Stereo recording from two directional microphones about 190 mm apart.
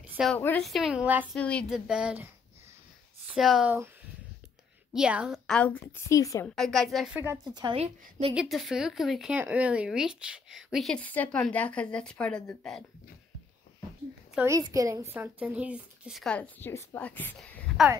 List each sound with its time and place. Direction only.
0.0 s a sound: 10° right (ahead or behind)
0.3 s speech: 5° left (ahead or behind)
1.3 s speech: 5° left (ahead or behind)
1.9 s speech: 5° right (ahead or behind)
3.3 s speech: centre (ahead or behind)
4.9 s speech: 5° right (ahead or behind)
5.6 s a woman's voice: 10° left (ahead or behind)
6.4 s speech: 5° left (ahead or behind)
7.2 s a woman's voice: 20° right (ahead or behind)
8.4 s speech: centre (ahead or behind)
14.3 s a woman's voice: 15° right (ahead or behind); by 17.8 s 5° left (ahead or behind)